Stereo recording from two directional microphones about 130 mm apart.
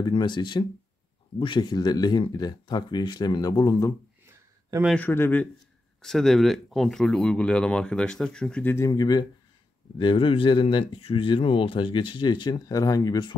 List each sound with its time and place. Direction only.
0.0 s speech: 35° left (ahead or behind)
4.3 s a sound: 20° right (ahead or behind)
4.9 s speech: 15° left (ahead or behind)
6.0 s speech: centre (ahead or behind)
8.7 s speech: 25° left (ahead or behind)